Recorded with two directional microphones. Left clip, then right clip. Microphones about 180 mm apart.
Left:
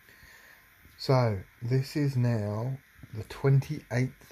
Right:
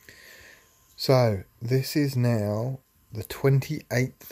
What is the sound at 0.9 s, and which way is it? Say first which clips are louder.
Speech: right 6 dB; 25° right (ahead or behind).